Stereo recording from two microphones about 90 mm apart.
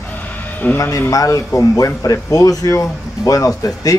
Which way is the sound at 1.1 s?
40° left (ahead or behind).